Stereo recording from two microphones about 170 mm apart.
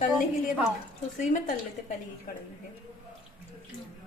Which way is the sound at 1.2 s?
50° left (ahead or behind).